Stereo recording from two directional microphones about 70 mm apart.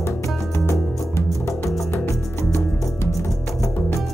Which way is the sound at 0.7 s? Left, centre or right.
Left.